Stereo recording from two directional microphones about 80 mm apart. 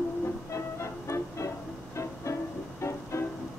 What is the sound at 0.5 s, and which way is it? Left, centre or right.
Music, left.